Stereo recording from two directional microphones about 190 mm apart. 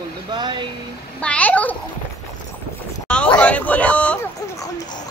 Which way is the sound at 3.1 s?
5° left (ahead or behind).